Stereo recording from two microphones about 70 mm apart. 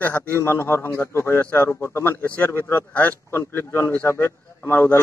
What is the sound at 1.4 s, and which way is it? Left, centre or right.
Speech, left.